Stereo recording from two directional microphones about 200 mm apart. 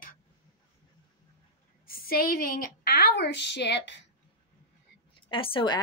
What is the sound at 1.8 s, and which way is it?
A woman's voice, 45° left (ahead or behind).